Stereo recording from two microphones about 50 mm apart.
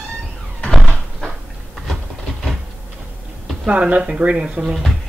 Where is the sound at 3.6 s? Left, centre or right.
Right.